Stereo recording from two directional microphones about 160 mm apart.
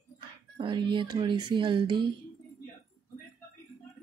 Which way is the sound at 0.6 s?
30° right (ahead or behind).